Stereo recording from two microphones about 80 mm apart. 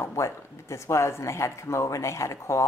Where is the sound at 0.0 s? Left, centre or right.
Left.